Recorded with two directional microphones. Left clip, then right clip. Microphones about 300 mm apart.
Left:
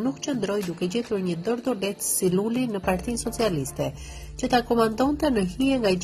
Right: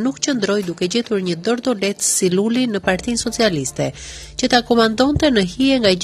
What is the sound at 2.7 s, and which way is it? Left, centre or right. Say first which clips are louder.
Speech: right 7 dB; right.